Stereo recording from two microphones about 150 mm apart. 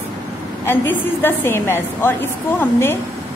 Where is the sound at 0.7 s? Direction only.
15° left (ahead or behind).